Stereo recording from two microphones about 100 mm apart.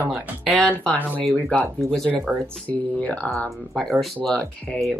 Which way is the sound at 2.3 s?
15° right (ahead or behind).